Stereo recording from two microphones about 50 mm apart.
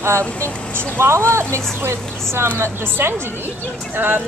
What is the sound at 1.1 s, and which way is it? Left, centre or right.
Speech, right.